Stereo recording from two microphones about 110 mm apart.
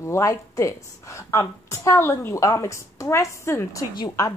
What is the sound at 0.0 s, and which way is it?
A woman's voice, 30° left (ahead or behind).